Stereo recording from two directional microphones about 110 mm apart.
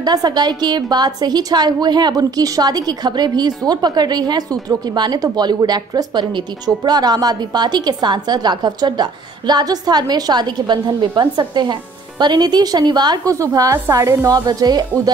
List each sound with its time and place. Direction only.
0.0 s a woman's voice: 40° right (ahead or behind)